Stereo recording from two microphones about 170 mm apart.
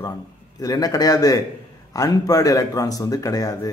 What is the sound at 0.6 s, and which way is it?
Speech, 20° left (ahead or behind).